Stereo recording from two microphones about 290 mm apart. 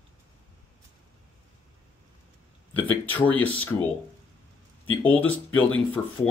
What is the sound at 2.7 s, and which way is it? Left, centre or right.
Speech, centre.